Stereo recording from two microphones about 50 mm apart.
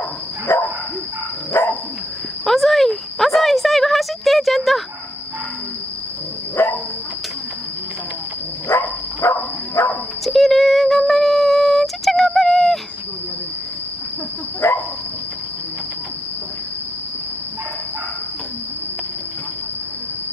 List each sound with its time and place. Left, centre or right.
0.5 s cricket: left
1.5 s dog: left
2.4 s a sound: centre
6.6 s cricket: left
8.6 s dog: left
10.2 s a sound: centre
14.6 s cricket: left